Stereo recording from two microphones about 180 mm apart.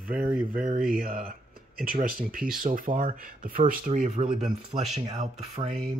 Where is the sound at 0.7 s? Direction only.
55° right (ahead or behind).